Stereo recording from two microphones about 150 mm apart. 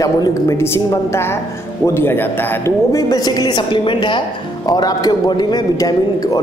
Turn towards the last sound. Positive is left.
turn(degrees=25)  # may be behind; listen again after turning